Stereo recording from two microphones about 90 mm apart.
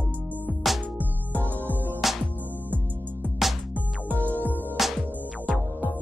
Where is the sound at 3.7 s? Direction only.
20° right (ahead or behind).